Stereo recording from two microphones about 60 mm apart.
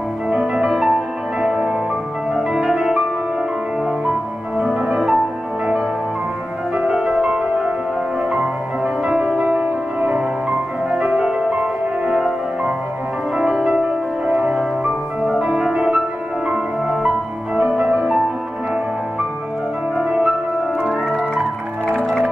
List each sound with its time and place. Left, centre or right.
0.3 s music: centre
4.6 s music: centre
6.8 s music: centre
20.0 s music: centre
20.8 s organ: centre